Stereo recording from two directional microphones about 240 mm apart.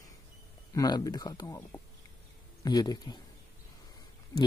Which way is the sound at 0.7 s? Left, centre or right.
Centre.